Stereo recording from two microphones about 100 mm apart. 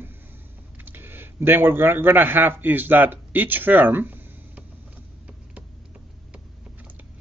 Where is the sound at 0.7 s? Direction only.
20° right (ahead or behind).